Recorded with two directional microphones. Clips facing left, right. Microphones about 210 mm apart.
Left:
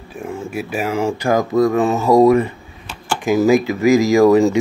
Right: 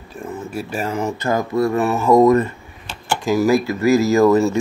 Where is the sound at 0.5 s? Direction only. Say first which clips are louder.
Left 3 dB; 10° left (ahead or behind).